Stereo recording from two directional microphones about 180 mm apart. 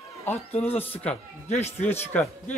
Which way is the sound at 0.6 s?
10° left (ahead or behind).